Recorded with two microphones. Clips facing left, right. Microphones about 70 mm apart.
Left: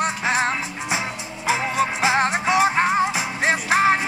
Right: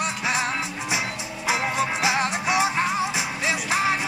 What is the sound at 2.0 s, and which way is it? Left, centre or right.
Music, left.